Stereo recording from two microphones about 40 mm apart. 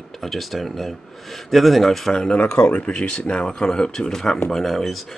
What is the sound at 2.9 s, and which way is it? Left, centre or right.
Speech, left.